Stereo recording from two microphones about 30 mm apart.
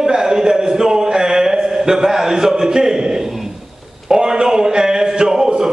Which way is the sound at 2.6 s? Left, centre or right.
Centre.